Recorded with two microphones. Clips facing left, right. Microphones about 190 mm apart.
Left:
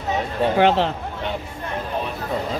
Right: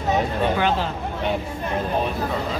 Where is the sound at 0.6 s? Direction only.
70° left (ahead or behind).